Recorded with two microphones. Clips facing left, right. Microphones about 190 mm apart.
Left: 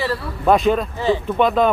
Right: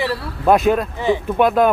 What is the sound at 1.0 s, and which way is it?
Cattle, 10° right (ahead or behind).